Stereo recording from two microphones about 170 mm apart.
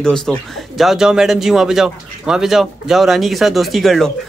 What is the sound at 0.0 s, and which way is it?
Speech, 5° left (ahead or behind).